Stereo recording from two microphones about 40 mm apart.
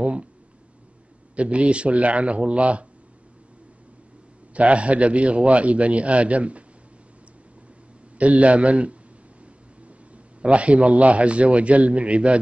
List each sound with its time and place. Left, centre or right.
0.0 s a sound: right
1.3 s a man's voice: right
4.6 s a man's voice: right
8.2 s a man's voice: right